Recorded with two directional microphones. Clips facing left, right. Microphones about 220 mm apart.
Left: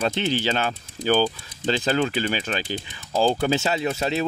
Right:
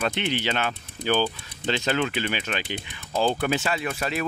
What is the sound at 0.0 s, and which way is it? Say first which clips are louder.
Speech: left 3 dB; 35° left (ahead or behind).